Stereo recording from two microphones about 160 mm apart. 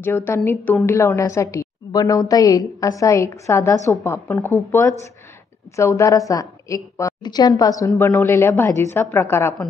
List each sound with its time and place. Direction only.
0.0 s a woman's voice: 15° left (ahead or behind)